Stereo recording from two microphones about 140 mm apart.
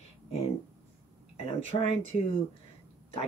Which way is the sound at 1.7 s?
40° left (ahead or behind).